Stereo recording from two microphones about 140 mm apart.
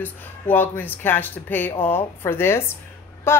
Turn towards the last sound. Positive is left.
turn(degrees=15)  # may be behind; listen again after turning